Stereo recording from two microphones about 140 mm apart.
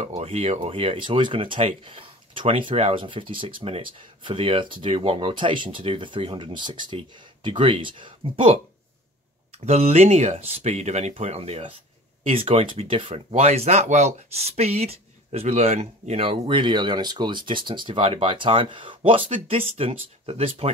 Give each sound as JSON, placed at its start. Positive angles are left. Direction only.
{"t": 0.0, "sound": "speech", "side_deg": -50}
{"t": 9.5, "sound": "speech", "side_deg": -50}